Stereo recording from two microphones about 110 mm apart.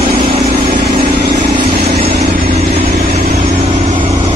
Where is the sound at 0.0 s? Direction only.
60° right (ahead or behind).